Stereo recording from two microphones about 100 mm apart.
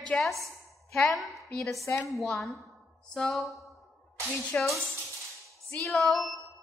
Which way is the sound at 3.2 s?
Centre (ahead or behind).